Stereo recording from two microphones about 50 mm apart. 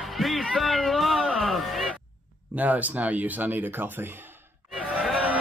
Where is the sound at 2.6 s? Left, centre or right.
Right.